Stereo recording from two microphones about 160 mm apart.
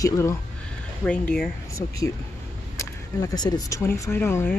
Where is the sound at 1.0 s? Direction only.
5° left (ahead or behind).